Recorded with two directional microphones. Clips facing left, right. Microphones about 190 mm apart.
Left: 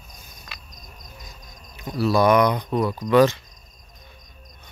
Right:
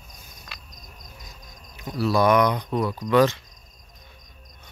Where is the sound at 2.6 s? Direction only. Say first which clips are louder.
Left 2 dB; 15° left (ahead or behind).